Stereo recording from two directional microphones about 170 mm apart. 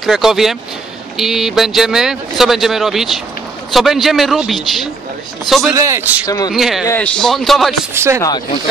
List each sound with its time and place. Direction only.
0.0 s speech: centre (ahead or behind)
5.7 s a man's voice: 20° right (ahead or behind)
6.2 s speech: 20° left (ahead or behind)
6.5 s speech: centre (ahead or behind)
7.9 s a man's voice: 15° right (ahead or behind)